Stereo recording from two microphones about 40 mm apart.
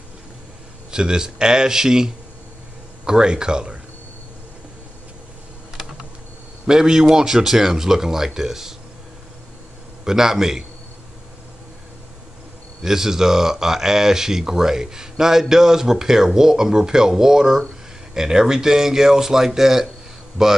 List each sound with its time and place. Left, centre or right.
0.9 s speech: centre
5.8 s computer keyboard: centre
6.6 s speech: centre
10.0 s speech: centre
12.8 s speech: centre